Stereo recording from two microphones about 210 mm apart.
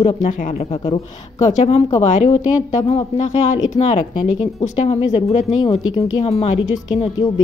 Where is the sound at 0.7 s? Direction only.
20° left (ahead or behind).